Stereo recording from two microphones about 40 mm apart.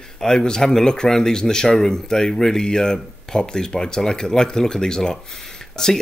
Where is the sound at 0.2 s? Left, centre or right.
Centre.